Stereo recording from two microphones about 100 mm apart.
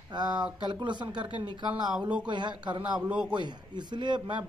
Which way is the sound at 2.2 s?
50° right (ahead or behind).